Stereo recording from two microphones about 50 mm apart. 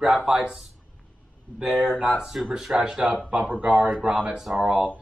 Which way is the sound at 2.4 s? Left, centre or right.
Centre.